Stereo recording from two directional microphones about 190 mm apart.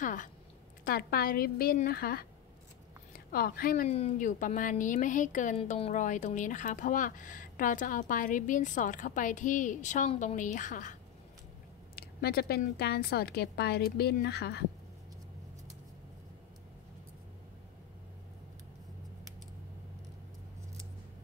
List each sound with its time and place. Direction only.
0.0 s a woman's voice: 45° left (ahead or behind)
3.3 s a woman's voice: 50° left (ahead or behind)
11.9 s a woman's voice: 55° left (ahead or behind)